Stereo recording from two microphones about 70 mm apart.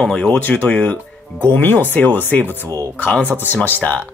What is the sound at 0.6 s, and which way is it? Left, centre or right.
Speech, left.